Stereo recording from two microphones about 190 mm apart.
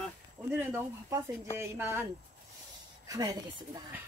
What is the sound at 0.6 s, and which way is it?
Speech, 10° right (ahead or behind).